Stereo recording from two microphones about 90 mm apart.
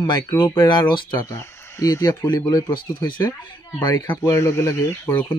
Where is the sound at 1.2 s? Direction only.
35° left (ahead or behind).